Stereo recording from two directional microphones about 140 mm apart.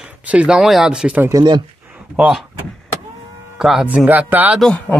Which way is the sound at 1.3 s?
30° right (ahead or behind).